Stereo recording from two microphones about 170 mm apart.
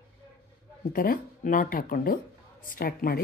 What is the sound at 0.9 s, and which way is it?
Speech, 55° left (ahead or behind).